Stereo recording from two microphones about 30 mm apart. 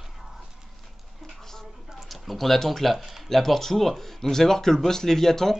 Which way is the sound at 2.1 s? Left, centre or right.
Centre.